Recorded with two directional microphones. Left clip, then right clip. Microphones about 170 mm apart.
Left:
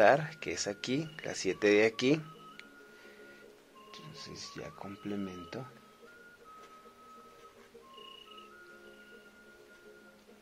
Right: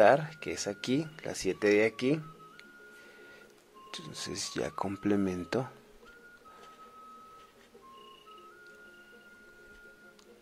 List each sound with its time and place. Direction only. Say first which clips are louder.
0.0 s speech: right 2 dB; 15° right (ahead or behind)
3.9 s speech: right 8 dB; 50° right (ahead or behind)